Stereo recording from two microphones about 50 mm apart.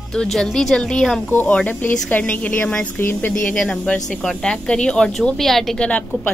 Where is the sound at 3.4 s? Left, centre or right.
Centre.